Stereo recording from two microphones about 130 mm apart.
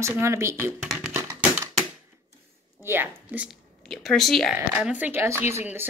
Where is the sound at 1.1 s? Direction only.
20° right (ahead or behind).